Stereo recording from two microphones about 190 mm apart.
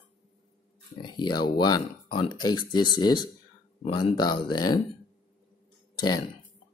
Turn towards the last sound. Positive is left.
turn(degrees=20)  # may be behind; listen again after turning